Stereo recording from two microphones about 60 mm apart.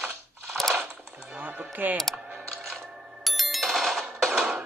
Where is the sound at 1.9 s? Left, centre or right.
Centre.